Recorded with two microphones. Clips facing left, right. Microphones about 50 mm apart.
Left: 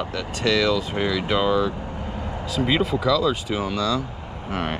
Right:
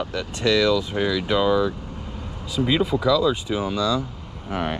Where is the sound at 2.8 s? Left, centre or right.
Centre.